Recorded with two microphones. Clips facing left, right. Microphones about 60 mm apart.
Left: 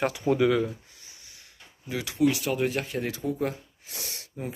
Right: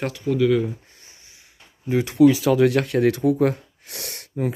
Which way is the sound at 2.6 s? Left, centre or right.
Right.